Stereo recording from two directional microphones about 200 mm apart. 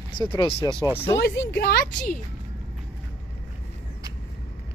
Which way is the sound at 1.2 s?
55° left (ahead or behind).